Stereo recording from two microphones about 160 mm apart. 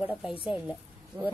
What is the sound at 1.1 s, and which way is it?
Speech, 25° right (ahead or behind).